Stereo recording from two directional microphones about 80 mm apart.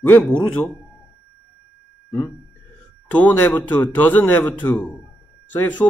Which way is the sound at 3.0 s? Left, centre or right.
Centre.